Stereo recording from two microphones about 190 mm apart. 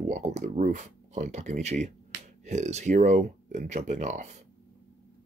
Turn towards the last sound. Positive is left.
turn(degrees=-40)  # may be behind; listen again after turning